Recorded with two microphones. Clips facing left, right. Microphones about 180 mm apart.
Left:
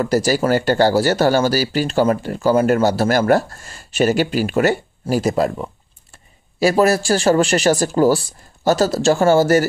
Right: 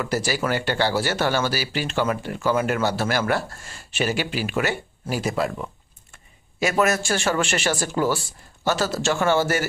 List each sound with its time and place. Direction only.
0.0 s speech: 40° left (ahead or behind)